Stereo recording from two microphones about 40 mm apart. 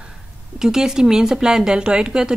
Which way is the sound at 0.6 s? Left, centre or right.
Centre.